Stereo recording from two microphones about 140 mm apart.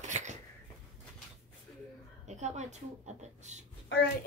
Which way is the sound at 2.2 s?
55° right (ahead or behind).